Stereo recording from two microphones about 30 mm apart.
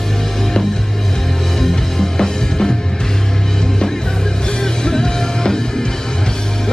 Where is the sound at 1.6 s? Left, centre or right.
Centre.